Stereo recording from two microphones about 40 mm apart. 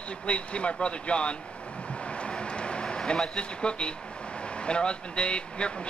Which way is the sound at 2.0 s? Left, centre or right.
Left.